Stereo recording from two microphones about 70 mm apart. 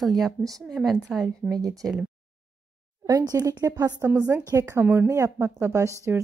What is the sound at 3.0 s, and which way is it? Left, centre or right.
Speech, right.